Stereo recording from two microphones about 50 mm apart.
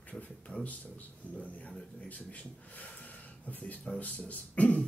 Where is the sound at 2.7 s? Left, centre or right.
Left.